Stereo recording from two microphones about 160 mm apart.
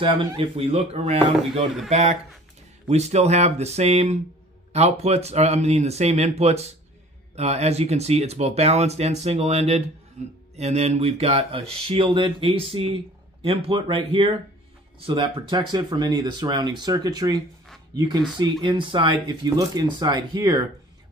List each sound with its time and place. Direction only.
0.0 s speech: 30° right (ahead or behind)